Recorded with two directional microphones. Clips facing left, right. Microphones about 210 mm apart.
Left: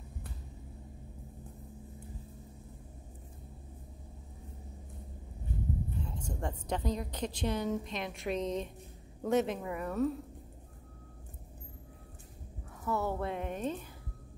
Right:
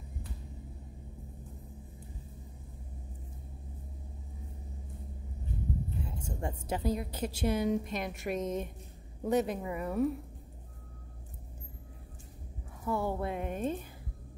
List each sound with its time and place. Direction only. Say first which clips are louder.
5.9 s a woman's voice: even; 10° right (ahead or behind)
8.4 s a woman's voice: even; 45° right (ahead or behind)
9.2 s a woman's voice: even; centre (ahead or behind)
12.8 s speech: right 1 dB; 10° right (ahead or behind)